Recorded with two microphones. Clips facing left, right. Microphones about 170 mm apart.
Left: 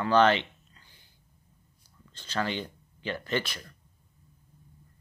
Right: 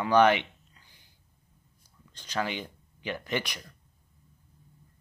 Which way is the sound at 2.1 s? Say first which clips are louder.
Left 1 dB; 10° right (ahead or behind).